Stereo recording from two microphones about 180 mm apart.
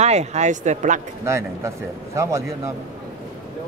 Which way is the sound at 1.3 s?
15° right (ahead or behind).